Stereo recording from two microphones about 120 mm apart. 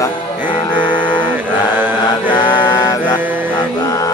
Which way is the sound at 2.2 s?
40° left (ahead or behind).